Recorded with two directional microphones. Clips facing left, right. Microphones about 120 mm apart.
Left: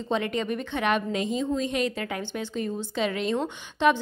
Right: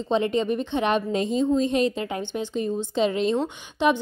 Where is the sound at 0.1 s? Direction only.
25° right (ahead or behind).